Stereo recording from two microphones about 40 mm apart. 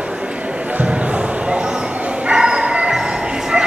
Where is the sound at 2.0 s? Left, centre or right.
Right.